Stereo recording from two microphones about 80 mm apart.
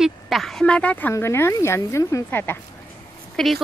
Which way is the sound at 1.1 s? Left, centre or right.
Left.